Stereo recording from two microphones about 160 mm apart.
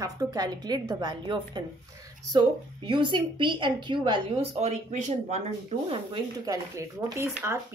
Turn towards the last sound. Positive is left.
turn(degrees=-15)  # may be behind; listen again after turning